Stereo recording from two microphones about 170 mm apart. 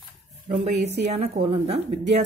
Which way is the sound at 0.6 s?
40° right (ahead or behind).